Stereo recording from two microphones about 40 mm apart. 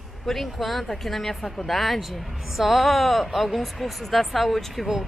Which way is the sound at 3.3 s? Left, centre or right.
Centre.